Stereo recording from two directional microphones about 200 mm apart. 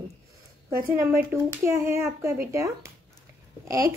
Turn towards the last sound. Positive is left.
turn(degrees=-15)  # may be behind; listen again after turning